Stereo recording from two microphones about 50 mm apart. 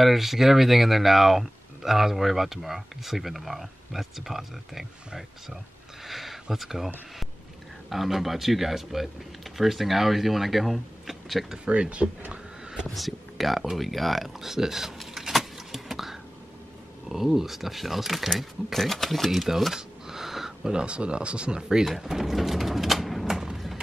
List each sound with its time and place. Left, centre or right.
0.0 s speech: centre
6.0 s a sound: centre
6.5 s speech: centre
7.9 s speech: centre
11.5 s speech: centre
12.3 s a sound: centre
12.9 s speech: centre
20.8 s speech: right
21.5 s pigeon: centre